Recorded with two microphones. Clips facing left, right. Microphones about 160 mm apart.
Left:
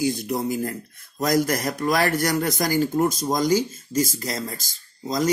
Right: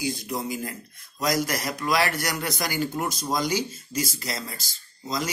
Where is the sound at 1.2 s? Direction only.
55° left (ahead or behind).